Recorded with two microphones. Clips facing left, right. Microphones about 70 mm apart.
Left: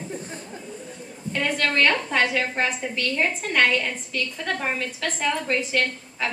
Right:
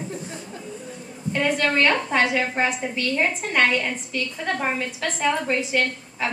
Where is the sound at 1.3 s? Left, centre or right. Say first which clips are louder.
Right 3 dB; centre.